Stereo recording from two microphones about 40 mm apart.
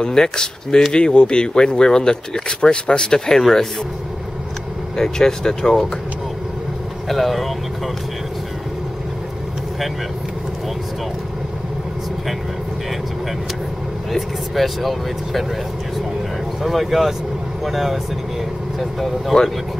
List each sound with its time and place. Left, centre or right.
0.0 s speech: centre
4.9 s speech: centre
7.1 s speech: centre
14.1 s speech: centre
16.6 s speech: centre